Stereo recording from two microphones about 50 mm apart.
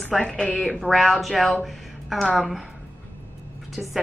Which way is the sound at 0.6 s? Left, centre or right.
Centre.